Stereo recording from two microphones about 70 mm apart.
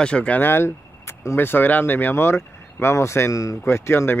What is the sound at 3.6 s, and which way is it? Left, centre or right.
Speech, left.